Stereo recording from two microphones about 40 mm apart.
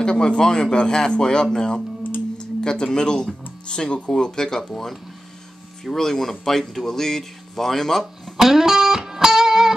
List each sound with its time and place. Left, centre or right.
0.0 s speech: left
5.9 s speech: centre
8.4 s music: centre